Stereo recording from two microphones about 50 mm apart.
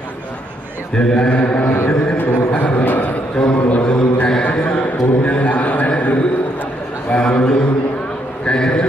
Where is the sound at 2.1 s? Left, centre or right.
Left.